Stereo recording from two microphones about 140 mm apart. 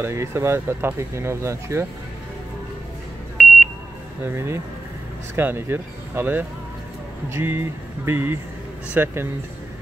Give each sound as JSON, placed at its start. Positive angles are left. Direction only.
{"t": 0.0, "sound": "speech", "side_deg": -20}
{"t": 4.2, "sound": "speech", "side_deg": -15}